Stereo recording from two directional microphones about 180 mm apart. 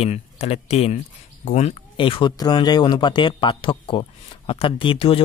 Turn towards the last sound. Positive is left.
turn(degrees=30)  # may be behind; listen again after turning